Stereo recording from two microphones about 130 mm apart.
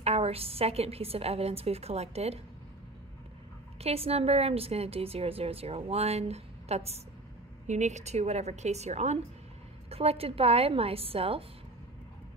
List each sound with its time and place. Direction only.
0.0 s a woman's voice: 50° right (ahead or behind)
3.8 s a woman's voice: 50° right (ahead or behind)
9.8 s a woman's voice: 50° right (ahead or behind)